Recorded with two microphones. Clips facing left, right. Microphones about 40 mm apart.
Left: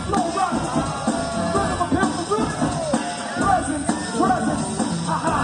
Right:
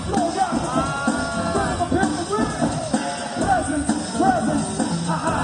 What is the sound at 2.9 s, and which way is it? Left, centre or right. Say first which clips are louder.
Music: even; left.